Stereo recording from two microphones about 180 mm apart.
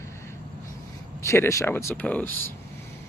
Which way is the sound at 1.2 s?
15° left (ahead or behind).